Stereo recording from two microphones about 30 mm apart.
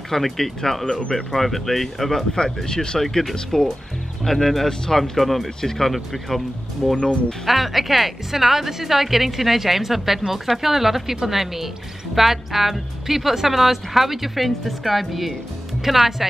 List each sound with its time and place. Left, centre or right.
0.1 s speech: centre
0.8 s speech: left
1.1 s speech: centre
2.3 s speech: left; by 5.5 s centre
5.6 s speech: centre
6.2 s speech: centre
7.4 s speech: centre